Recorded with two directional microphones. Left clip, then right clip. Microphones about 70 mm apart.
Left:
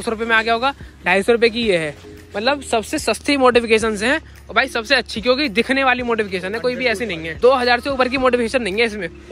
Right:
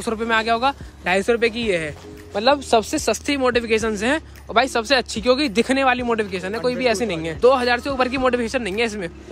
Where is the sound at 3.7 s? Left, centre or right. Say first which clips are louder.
Left 4 dB; right.